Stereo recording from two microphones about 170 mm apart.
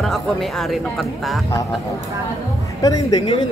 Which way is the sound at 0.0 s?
Centre (ahead or behind).